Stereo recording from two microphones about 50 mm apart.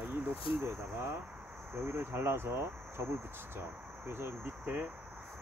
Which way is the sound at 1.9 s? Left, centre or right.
Right.